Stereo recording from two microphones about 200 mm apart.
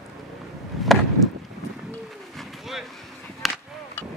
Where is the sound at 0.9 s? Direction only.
Centre (ahead or behind).